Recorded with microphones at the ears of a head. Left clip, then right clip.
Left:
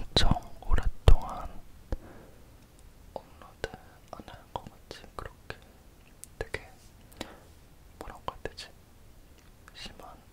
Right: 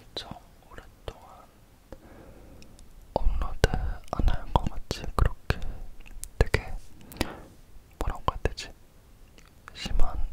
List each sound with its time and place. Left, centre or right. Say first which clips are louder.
0.0 s whispering: left 11 dB; left
2.3 s whispering: right 5 dB; right